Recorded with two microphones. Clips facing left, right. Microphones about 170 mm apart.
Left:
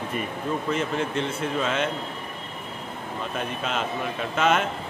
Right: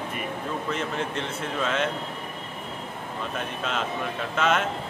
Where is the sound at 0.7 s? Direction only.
5° left (ahead or behind).